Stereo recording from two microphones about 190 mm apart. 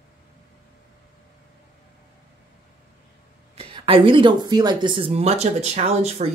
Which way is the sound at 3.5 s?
30° right (ahead or behind).